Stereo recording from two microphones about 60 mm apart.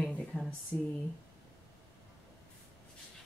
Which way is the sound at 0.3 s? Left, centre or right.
Left.